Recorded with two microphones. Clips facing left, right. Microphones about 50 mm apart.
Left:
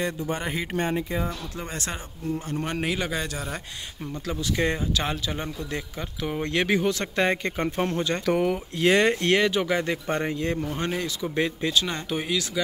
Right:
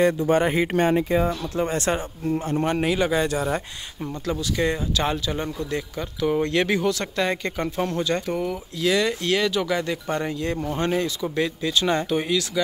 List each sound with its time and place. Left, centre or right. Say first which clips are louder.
0.4 s speech: right 9 dB; right
0.7 s speech: right 6 dB; right
1.7 s speech: right 8 dB; right
2.6 s a man's voice: right 6 dB; centre
3.3 s speech: right 8 dB; right
4.4 s speech: even; centre
8.3 s speech: left 3 dB; left
9.4 s speech: even; left
10.8 s a man's voice: right 5 dB; centre
11.3 s speech: even; left
11.7 s a man's voice: right 4 dB; centre
12.1 s speech: right 4 dB; centre